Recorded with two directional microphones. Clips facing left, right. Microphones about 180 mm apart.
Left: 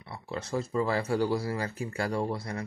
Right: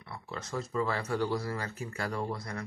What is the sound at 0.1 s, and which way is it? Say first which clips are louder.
Speech: left 5 dB; 30° left (ahead or behind).